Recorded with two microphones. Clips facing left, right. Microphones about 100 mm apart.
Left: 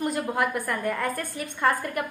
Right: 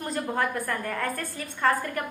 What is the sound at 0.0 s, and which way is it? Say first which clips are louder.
Speech: left 2 dB; 15° left (ahead or behind).